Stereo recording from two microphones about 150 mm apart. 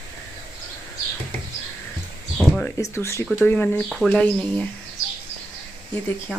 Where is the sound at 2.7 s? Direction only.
20° left (ahead or behind).